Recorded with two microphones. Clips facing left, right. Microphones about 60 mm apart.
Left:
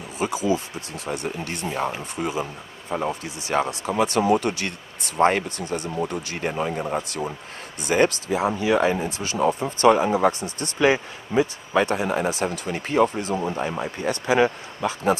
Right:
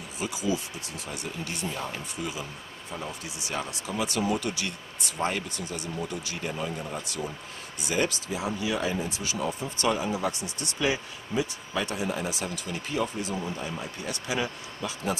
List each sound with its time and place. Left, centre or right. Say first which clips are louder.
0.2 s speech: left 7 dB; left